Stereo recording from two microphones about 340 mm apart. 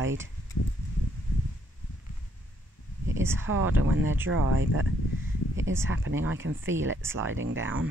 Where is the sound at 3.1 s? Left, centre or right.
Centre.